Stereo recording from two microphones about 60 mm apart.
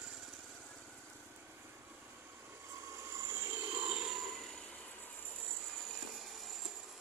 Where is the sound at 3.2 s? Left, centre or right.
Right.